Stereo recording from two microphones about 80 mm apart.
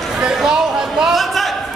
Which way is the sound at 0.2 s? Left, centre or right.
Centre.